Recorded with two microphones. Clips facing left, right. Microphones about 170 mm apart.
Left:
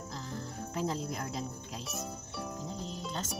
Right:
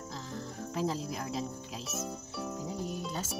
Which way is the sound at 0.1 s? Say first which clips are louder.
Even; centre (ahead or behind).